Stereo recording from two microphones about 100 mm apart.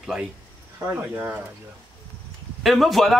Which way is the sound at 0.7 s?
20° right (ahead or behind).